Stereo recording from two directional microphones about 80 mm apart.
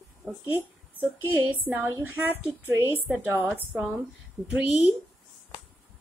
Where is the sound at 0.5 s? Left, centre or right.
Right.